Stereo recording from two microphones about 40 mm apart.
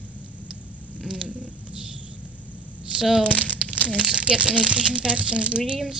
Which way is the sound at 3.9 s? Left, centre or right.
Centre.